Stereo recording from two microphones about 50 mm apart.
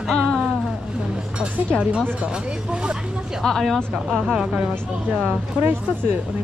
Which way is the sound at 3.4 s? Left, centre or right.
Centre.